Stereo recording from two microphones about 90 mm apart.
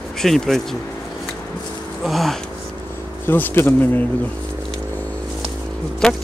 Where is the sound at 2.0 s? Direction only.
Centre (ahead or behind).